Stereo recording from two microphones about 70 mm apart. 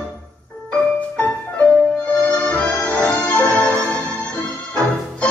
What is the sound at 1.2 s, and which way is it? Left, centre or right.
Music, left.